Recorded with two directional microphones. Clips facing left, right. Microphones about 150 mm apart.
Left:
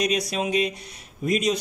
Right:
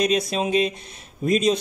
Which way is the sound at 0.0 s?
25° right (ahead or behind).